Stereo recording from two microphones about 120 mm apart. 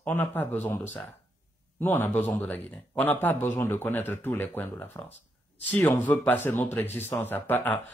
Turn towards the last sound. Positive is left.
turn(degrees=15)  # may be behind; listen again after turning